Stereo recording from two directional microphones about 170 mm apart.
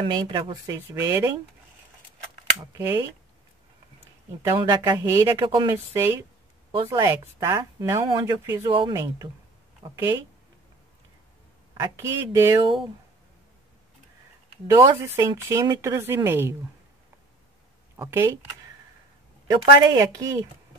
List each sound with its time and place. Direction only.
0.0 s speech: 25° right (ahead or behind)
2.6 s speech: 20° right (ahead or behind)
4.4 s speech: 25° right (ahead or behind)
11.7 s speech: 20° right (ahead or behind)
14.7 s speech: 20° right (ahead or behind)
17.9 s speech: 15° right (ahead or behind)
19.6 s speech: 20° right (ahead or behind)